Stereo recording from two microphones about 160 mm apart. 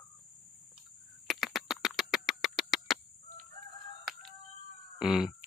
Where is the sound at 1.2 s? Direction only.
Centre (ahead or behind).